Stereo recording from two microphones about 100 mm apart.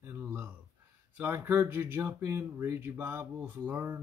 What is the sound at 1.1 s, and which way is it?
Speech, 20° right (ahead or behind).